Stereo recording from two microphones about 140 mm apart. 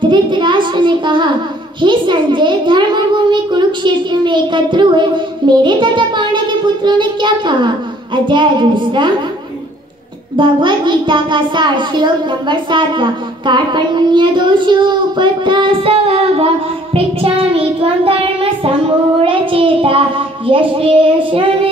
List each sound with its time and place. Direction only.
0.0 s a child's voice: 35° right (ahead or behind)
10.3 s a child's voice: 35° right (ahead or behind)